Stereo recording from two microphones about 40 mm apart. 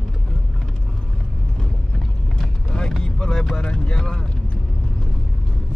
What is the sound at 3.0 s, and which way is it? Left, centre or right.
Vehicle, centre.